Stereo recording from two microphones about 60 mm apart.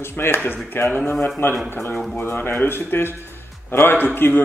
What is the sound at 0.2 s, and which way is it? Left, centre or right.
Speech, left.